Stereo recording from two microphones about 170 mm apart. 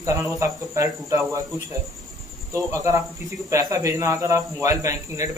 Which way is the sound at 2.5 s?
20° right (ahead or behind).